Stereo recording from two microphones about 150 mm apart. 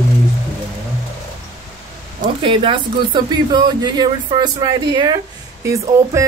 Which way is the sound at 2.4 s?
35° right (ahead or behind).